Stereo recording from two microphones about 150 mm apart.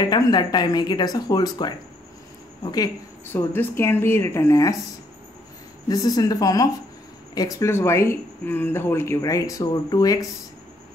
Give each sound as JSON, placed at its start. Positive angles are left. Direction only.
{"t": 0.0, "sound": "speech", "side_deg": 30}
{"t": 5.9, "sound": "speech", "side_deg": 25}